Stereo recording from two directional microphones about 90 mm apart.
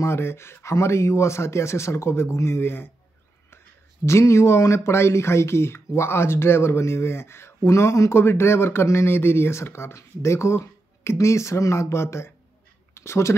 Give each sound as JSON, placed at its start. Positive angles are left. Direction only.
{"t": 0.0, "sound": "speech", "side_deg": 30}
{"t": 4.0, "sound": "speech", "side_deg": 30}